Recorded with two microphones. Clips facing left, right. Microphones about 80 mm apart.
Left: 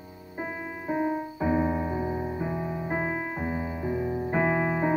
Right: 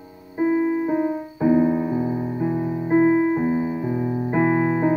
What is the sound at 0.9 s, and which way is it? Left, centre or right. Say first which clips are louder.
Music: right 5 dB; centre.